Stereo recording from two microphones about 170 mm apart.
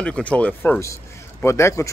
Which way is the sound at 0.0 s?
5° left (ahead or behind).